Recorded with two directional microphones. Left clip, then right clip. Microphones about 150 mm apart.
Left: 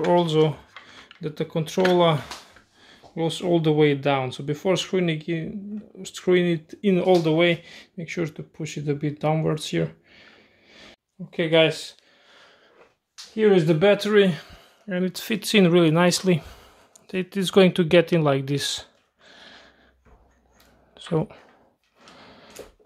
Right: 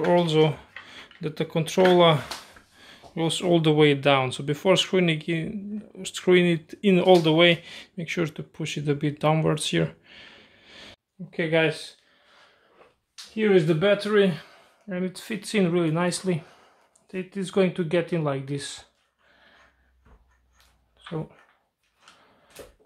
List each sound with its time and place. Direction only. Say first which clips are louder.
0.0 s speech: left 1 dB; 15° left (ahead or behind)
11.2 s speech: left 4 dB; 35° left (ahead or behind)
13.4 s speech: left 3 dB; 40° left (ahead or behind)
17.1 s speech: left 7 dB; 60° left (ahead or behind)
20.9 s a sound: left 9 dB; 90° left